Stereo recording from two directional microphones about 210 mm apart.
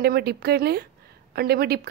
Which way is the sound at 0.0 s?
50° right (ahead or behind).